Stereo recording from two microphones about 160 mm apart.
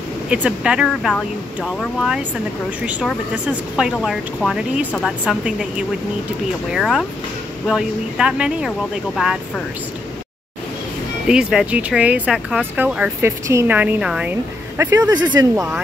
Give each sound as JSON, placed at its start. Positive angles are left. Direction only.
{"t": 0.3, "sound": "speech", "side_deg": -5}
{"t": 11.2, "sound": "speech", "side_deg": -5}
{"t": 14.8, "sound": "speech", "side_deg": -20}